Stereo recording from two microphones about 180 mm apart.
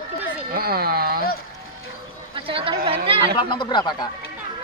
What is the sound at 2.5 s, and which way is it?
Chatter, 30° right (ahead or behind).